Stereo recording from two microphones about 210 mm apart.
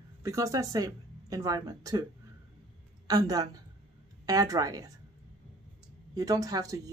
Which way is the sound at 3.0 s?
20° right (ahead or behind).